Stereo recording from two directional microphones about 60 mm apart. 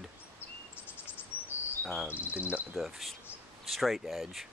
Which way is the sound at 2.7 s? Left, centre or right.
Centre.